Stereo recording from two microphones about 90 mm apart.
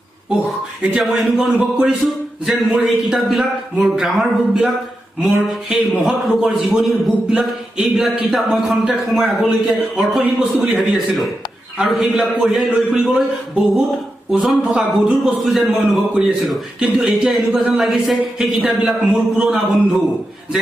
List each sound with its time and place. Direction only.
0.9 s a man's voice: 5° right (ahead or behind)
10.2 s a man's voice: 15° right (ahead or behind)
10.9 s a man's voice: centre (ahead or behind)
14.6 s a man's voice: 10° right (ahead or behind)
16.8 s a man's voice: 10° right (ahead or behind)
17.3 s a man's voice: centre (ahead or behind)